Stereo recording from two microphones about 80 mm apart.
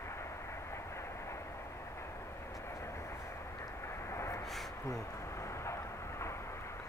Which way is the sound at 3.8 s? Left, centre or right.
Left.